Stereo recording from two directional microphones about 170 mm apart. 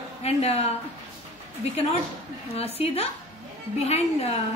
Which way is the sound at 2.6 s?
35° left (ahead or behind).